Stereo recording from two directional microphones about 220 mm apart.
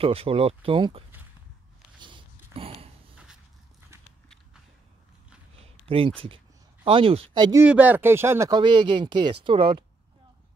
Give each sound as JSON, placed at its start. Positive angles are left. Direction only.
{"t": 0.0, "sound": "speech", "side_deg": -25}
{"t": 2.0, "sound": "a sound", "side_deg": -20}
{"t": 5.9, "sound": "speech", "side_deg": -25}
{"t": 7.6, "sound": "speech", "side_deg": -5}